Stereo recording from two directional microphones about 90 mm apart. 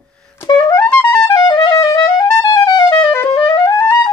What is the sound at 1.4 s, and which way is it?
Clarinet, 45° left (ahead or behind).